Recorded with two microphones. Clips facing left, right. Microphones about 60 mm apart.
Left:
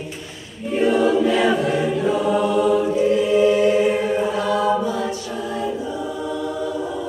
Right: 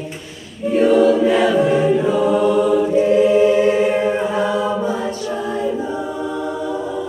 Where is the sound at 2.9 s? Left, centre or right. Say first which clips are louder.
Right 4 dB; right.